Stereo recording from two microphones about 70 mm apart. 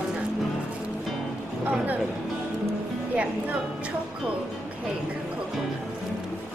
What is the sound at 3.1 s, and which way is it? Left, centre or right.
Speech, centre.